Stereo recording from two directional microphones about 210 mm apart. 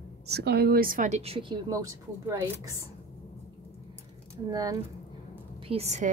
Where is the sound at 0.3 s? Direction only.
50° right (ahead or behind); by 1.8 s 20° right (ahead or behind).